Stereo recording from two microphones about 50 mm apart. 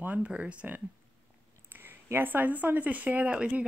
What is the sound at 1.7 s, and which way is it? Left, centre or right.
Speech, right.